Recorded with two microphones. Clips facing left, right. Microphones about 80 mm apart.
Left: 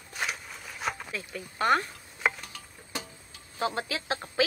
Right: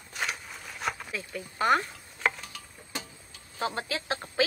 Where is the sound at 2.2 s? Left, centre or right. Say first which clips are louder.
Even; centre.